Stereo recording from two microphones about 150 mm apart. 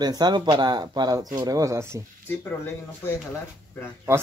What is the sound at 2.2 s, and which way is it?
Speech, 15° left (ahead or behind).